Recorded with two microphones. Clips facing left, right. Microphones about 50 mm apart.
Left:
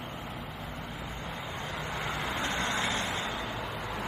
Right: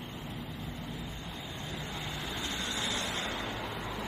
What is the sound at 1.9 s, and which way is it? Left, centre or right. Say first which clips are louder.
Vehicle: left 7 dB; left.